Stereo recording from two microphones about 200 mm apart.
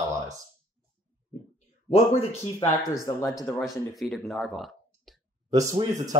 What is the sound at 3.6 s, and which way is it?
Speech, centre (ahead or behind).